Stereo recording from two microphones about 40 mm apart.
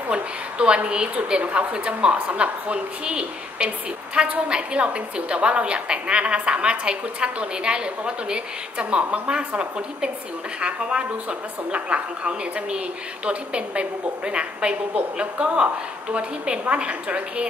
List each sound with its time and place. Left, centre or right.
0.1 s a woman's voice: right